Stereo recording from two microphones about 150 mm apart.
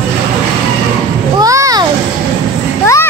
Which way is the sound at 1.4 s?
20° right (ahead or behind).